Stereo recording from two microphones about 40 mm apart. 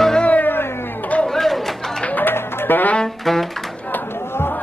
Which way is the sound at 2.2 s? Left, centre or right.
Left.